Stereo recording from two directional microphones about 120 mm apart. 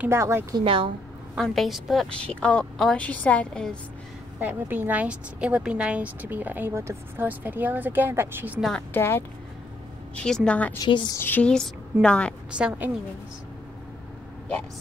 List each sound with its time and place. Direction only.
0.0 s a woman's voice: 20° right (ahead or behind)
0.6 s speech: 45° right (ahead or behind)
1.4 s a woman's voice: centre (ahead or behind)
4.4 s a woman's voice: 15° right (ahead or behind)
8.5 s a woman's voice: centre (ahead or behind)
8.9 s speech: 20° left (ahead or behind)
10.1 s a woman's voice: 5° left (ahead or behind)
10.8 s a woman's voice: 35° left (ahead or behind)
11.1 s a woman's voice: 15° left (ahead or behind)
12.4 s a woman's voice: 10° right (ahead or behind)